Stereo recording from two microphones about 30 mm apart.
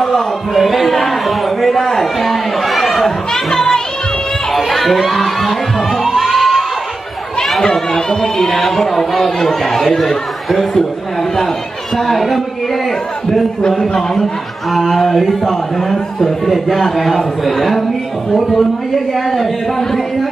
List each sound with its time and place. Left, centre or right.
0.6 s a sound: centre
4.5 s speech: centre
6.0 s crowd: centre
7.7 s speech: centre
12.1 s a man's voice: centre
13.7 s speech: centre
14.7 s a man's voice: centre
19.3 s a man's voice: centre